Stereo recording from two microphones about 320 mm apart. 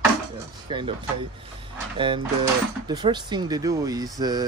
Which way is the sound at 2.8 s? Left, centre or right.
Centre.